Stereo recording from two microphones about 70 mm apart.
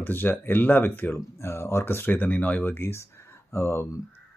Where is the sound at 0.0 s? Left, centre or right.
Left.